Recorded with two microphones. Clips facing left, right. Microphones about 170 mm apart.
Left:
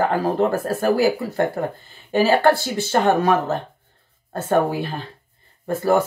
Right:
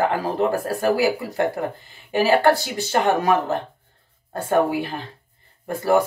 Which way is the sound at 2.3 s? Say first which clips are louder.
Right 1 dB; 15° right (ahead or behind).